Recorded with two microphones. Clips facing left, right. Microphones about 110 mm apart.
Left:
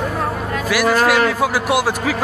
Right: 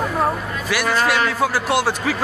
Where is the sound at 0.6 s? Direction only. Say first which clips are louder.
Left 4 dB; 5° left (ahead or behind).